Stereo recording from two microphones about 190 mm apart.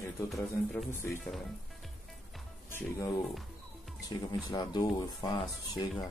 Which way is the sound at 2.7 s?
15° left (ahead or behind).